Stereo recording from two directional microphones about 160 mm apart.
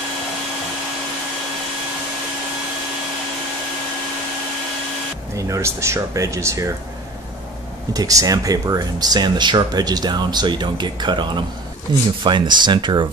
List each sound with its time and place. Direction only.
5.3 s speech: 20° right (ahead or behind)
7.9 s speech: 20° right (ahead or behind)